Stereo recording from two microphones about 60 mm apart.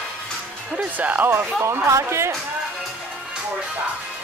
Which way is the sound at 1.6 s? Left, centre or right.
Right.